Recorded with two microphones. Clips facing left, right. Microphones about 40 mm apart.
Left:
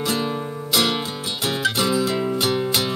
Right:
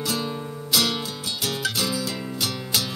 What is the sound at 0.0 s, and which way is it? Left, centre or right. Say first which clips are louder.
Music: left 4 dB; left.